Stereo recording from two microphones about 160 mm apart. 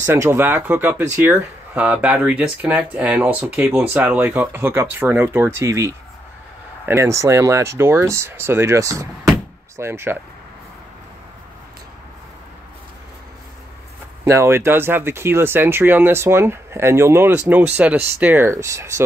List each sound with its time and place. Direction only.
0.0 s speech: 15° right (ahead or behind)
6.9 s speech: 20° right (ahead or behind)
14.2 s speech: 15° right (ahead or behind)